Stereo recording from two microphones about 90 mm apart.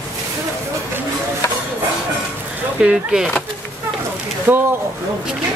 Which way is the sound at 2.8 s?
5° right (ahead or behind).